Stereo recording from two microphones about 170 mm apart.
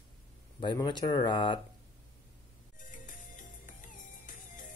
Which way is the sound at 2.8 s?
50° left (ahead or behind).